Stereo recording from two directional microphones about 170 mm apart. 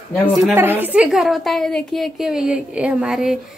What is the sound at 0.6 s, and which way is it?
A woman's voice, 10° right (ahead or behind).